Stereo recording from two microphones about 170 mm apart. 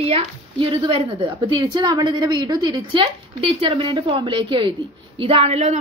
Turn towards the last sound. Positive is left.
turn(degrees=-40)  # may be behind; listen again after turning